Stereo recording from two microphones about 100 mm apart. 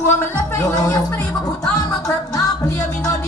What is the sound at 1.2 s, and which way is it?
Music, 40° left (ahead or behind).